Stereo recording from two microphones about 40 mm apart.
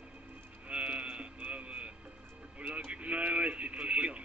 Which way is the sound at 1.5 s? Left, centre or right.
Right.